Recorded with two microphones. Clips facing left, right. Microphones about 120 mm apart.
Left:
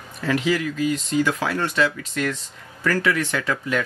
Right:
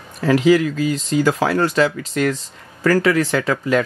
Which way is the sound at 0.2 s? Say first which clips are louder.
Right 8 dB; 40° right (ahead or behind).